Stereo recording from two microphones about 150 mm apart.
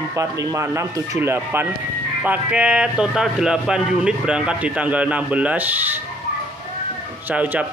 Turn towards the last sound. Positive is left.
turn(degrees=-10)  # may be behind; listen again after turning